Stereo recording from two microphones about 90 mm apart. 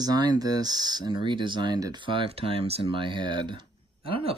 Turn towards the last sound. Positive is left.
turn(degrees=-90)